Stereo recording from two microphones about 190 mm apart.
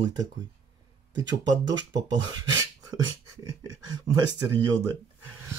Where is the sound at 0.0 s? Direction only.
20° right (ahead or behind).